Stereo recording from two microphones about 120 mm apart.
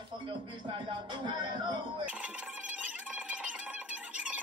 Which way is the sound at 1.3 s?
40° right (ahead or behind).